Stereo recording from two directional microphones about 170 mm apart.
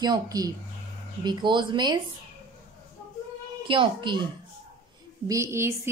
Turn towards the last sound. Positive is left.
turn(degrees=-15)  # may be behind; listen again after turning